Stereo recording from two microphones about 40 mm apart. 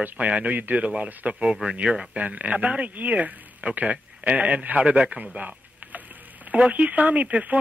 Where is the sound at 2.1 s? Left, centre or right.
Right.